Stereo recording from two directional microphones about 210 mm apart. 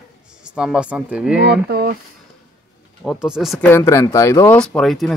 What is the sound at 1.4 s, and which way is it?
Speech, 50° right (ahead or behind).